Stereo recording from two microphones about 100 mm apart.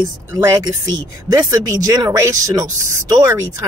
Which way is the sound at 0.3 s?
35° right (ahead or behind).